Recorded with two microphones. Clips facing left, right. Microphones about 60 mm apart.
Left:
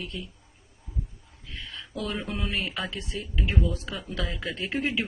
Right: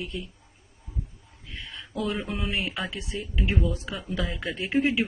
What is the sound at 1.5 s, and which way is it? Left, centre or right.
Speech, centre.